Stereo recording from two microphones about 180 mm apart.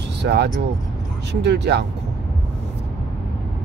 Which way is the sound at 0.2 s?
65° right (ahead or behind).